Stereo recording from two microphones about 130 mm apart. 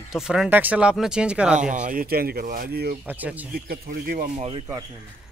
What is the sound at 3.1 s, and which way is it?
Speech, 15° right (ahead or behind).